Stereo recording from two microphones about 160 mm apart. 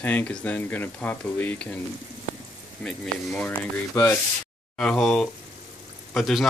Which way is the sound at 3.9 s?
20° left (ahead or behind).